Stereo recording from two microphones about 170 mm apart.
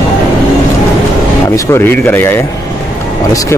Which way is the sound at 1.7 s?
15° left (ahead or behind).